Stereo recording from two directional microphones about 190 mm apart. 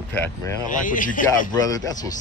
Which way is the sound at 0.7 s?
45° left (ahead or behind).